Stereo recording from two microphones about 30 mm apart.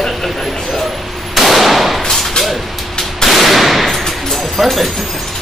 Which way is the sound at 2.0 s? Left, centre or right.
Centre.